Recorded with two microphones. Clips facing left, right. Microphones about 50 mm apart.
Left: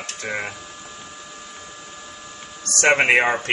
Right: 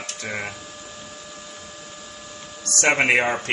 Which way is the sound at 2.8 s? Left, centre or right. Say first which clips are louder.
Left 2 dB; centre.